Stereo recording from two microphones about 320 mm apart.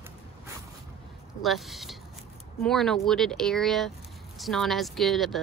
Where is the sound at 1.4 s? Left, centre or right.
Centre.